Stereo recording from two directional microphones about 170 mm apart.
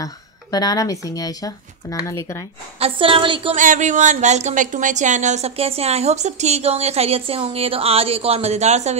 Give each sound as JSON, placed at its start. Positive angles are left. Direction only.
{"t": 0.0, "sound": "speech", "side_deg": 25}
{"t": 2.8, "sound": "speech", "side_deg": -30}
{"t": 3.5, "sound": "speech", "side_deg": -50}